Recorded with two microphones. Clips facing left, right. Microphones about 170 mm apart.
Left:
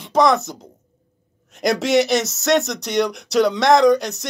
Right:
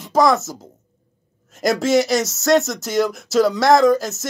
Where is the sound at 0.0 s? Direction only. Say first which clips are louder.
Even; centre (ahead or behind).